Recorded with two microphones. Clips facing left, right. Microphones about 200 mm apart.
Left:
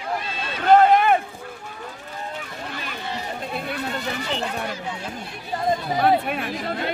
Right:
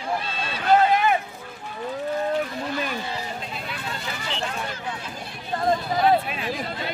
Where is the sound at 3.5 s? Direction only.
55° left (ahead or behind).